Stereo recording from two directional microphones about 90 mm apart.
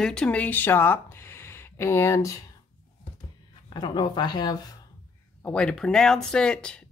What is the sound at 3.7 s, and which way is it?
Speech, 60° left (ahead or behind).